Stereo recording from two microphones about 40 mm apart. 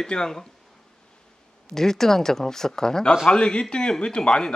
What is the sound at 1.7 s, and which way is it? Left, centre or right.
A woman's voice, centre.